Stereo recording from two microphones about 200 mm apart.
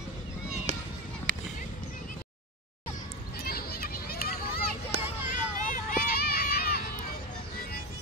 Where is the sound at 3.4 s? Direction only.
50° left (ahead or behind).